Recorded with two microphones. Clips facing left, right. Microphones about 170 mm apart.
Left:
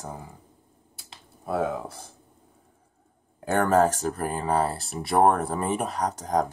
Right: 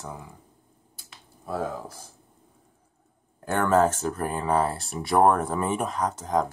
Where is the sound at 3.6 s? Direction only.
40° left (ahead or behind).